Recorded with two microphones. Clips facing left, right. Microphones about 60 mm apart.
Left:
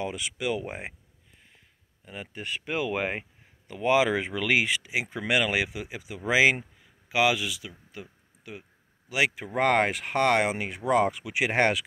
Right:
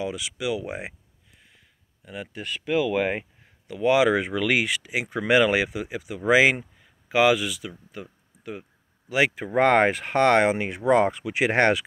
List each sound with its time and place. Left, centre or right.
0.0 s speech: left
0.7 s speech: centre
2.0 s speech: centre
3.6 s speech: left
4.4 s speech: centre
5.0 s speech: centre
5.6 s speech: centre
6.2 s speech: centre
7.9 s a sound: centre
9.1 s speech: centre
10.5 s speech: right
11.3 s speech: centre